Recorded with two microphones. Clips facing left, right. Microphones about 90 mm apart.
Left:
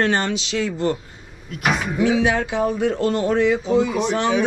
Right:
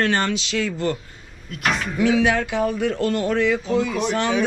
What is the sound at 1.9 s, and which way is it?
Speech, 20° left (ahead or behind).